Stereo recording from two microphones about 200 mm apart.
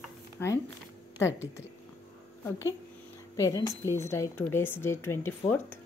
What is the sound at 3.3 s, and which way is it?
Speech, 15° left (ahead or behind).